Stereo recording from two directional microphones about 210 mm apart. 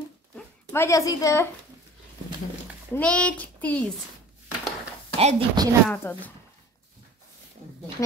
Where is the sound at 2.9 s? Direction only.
5° left (ahead or behind).